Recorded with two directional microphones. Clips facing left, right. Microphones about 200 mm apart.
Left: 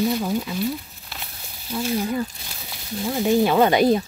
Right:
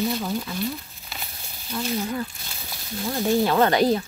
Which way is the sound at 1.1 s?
Centre (ahead or behind).